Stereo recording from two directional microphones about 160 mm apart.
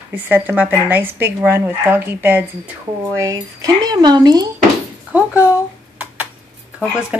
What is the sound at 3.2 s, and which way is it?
Speech, 25° right (ahead or behind).